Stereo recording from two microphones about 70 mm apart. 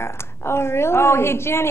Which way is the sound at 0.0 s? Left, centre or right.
Left.